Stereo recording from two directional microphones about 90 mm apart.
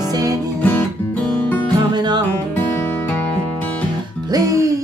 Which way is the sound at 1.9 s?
50° right (ahead or behind).